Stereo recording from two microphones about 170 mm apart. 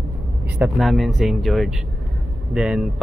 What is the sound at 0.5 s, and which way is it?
Speech, 5° right (ahead or behind).